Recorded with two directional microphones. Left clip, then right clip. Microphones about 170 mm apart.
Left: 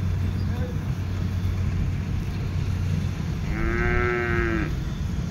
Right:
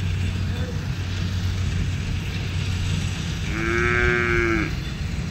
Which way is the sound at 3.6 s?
35° left (ahead or behind).